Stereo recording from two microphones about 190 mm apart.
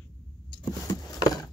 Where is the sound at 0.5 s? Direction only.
20° left (ahead or behind).